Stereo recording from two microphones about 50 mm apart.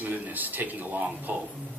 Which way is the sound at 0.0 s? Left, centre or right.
Right.